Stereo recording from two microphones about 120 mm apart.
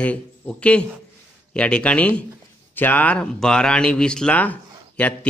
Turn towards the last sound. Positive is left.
turn(degrees=10)  # may be behind; listen again after turning